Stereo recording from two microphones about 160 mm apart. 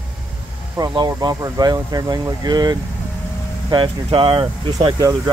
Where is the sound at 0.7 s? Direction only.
25° right (ahead or behind).